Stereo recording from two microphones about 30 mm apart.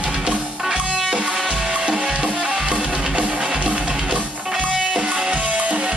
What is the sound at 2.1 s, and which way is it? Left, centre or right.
Music, right.